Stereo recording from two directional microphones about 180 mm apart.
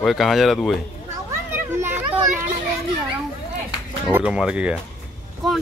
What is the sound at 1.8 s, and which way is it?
Children playing, 10° right (ahead or behind).